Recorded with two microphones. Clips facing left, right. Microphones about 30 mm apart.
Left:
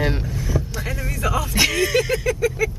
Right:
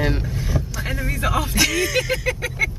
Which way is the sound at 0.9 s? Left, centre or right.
Right.